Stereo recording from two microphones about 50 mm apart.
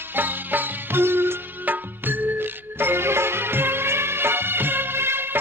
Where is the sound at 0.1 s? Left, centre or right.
Right.